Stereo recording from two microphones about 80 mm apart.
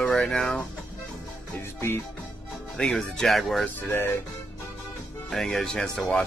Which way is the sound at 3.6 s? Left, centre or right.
Left.